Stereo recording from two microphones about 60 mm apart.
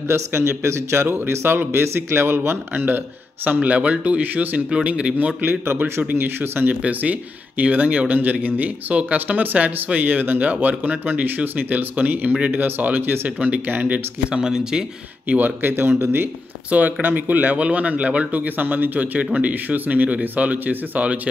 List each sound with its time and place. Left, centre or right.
0.1 s speech: right
1.0 s speech: right
3.5 s speech: right
4.6 s speech: centre
5.1 s speech: right
6.8 s speech: right
14.3 s speech: centre
15.2 s speech: right
16.0 s speech: right
16.7 s speech: right